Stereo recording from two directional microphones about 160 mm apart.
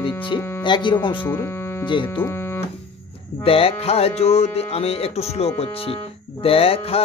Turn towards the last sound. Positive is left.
turn(degrees=35)  # may be behind; listen again after turning